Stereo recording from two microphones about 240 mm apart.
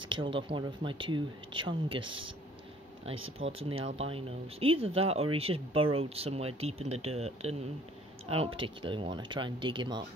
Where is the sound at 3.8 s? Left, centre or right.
Right.